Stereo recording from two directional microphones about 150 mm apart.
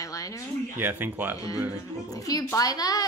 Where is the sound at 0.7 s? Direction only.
15° right (ahead or behind).